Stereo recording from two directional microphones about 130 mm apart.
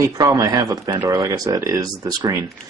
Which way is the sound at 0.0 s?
25° right (ahead or behind).